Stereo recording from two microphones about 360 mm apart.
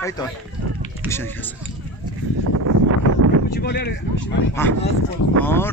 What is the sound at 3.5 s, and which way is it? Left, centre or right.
Speech, left.